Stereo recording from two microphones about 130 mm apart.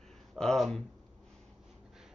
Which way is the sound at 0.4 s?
Centre (ahead or behind).